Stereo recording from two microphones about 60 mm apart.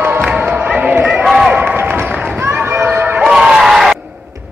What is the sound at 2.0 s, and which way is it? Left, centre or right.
Run, right.